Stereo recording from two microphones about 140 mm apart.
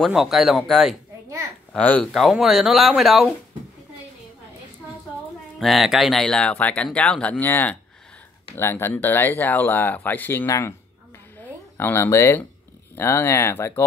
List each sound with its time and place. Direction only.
0.0 s speech: centre (ahead or behind)
5.6 s speech: centre (ahead or behind); by 10.7 s 15° left (ahead or behind)
11.7 s speech: 15° left (ahead or behind)